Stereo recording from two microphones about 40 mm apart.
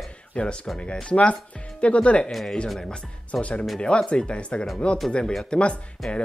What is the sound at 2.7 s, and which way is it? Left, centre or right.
Speech, centre.